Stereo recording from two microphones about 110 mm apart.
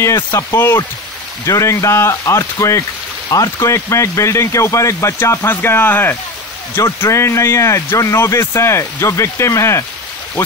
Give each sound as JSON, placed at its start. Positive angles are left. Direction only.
{"t": 0.0, "sound": "speech", "side_deg": 25}